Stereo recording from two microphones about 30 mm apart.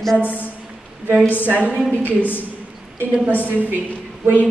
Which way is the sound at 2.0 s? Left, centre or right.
Left.